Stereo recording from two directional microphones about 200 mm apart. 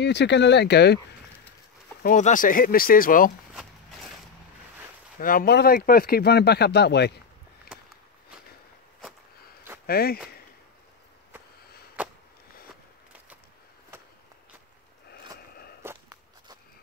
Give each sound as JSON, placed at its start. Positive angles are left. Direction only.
{"t": 0.0, "sound": "speech", "side_deg": 60}
{"t": 2.0, "sound": "speech", "side_deg": 40}
{"t": 5.2, "sound": "speech", "side_deg": 45}
{"t": 9.8, "sound": "speech", "side_deg": 50}
{"t": 12.0, "sound": "a sound", "side_deg": -5}
{"t": 15.0, "sound": "a sound", "side_deg": 50}
{"t": 15.8, "sound": "walk", "side_deg": -15}